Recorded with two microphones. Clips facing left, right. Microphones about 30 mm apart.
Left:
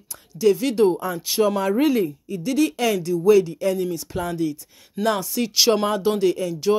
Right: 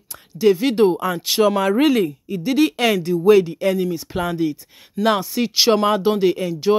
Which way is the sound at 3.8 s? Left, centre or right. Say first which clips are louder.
Right 3 dB; right.